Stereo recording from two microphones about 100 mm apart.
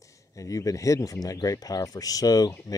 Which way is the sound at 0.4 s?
35° left (ahead or behind).